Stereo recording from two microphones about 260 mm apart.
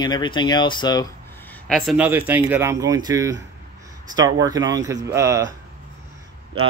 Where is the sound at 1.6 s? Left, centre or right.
Centre.